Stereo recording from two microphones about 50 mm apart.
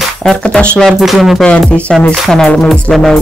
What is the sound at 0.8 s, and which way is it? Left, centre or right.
Music, centre.